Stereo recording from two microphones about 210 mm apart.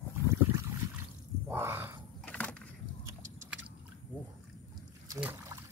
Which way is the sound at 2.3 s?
5° left (ahead or behind).